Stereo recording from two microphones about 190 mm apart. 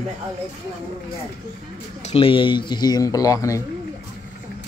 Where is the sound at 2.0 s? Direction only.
30° left (ahead or behind).